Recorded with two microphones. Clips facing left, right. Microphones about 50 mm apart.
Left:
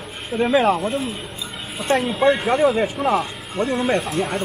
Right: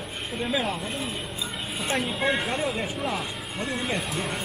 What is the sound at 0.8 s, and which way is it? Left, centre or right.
Speech, centre.